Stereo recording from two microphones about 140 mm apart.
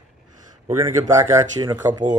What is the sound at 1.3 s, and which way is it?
Speech, 30° right (ahead or behind).